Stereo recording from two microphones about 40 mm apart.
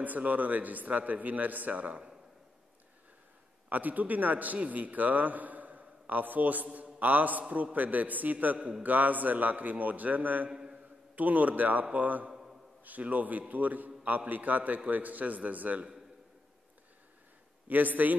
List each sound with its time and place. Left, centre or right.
0.0 s a man's voice: right
3.6 s a man's voice: right
10.5 s a sound: centre
11.1 s a man's voice: right
12.3 s a sound: centre
12.8 s a man's voice: right
17.6 s a man's voice: right